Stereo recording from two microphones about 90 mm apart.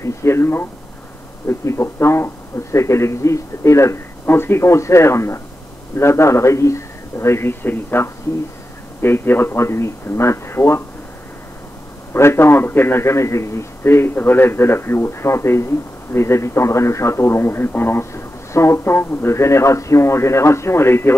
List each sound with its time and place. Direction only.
0.0 s a man's voice: 30° left (ahead or behind)
12.1 s a man's voice: 30° left (ahead or behind)